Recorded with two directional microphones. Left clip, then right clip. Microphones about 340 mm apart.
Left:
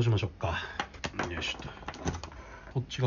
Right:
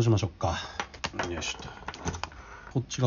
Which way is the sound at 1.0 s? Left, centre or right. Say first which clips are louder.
Right 4 dB; centre.